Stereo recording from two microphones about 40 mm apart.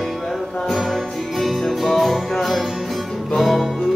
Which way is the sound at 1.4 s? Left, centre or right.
Centre.